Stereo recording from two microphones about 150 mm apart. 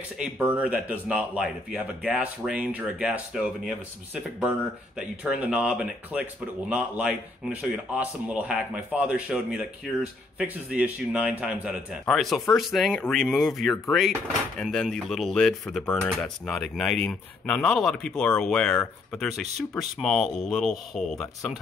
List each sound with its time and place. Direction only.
0.2 s speech: 10° right (ahead or behind)